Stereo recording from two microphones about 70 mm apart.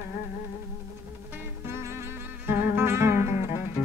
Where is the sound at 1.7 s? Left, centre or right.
Right.